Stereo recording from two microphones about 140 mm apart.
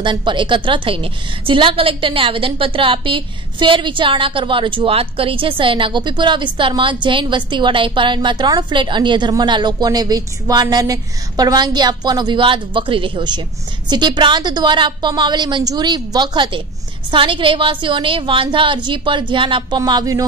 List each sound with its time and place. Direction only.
0.0 s a woman's voice: 35° right (ahead or behind)
19.8 s speech: 25° right (ahead or behind)